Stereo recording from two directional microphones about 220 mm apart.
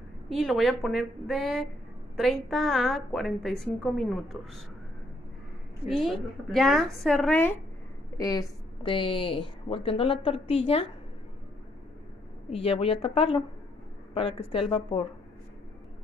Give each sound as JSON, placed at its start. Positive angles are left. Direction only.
{"t": 0.3, "sound": "a woman's voice", "side_deg": 0}
{"t": 5.9, "sound": "a woman's voice", "side_deg": 0}
{"t": 8.2, "sound": "a woman's voice", "side_deg": 15}
{"t": 12.4, "sound": "a woman's voice", "side_deg": 25}